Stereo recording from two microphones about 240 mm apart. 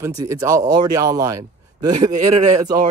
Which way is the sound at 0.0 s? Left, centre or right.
Centre.